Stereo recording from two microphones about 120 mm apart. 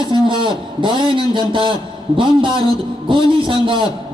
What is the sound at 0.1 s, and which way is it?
A man's voice, 40° right (ahead or behind).